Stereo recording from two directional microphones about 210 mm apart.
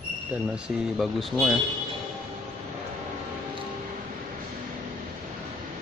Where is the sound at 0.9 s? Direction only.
Centre (ahead or behind).